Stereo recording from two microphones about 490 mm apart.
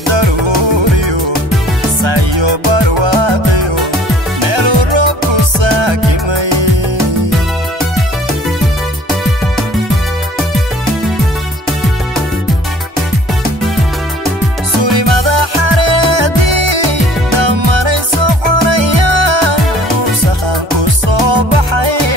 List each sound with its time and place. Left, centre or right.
2.0 s music: right
14.8 s music: right
21.1 s music: right